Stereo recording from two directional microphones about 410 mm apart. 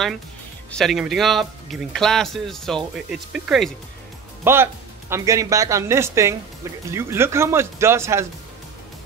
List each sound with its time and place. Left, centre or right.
0.7 s speech: centre